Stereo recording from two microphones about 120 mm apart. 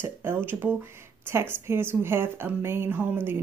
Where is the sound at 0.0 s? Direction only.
20° right (ahead or behind).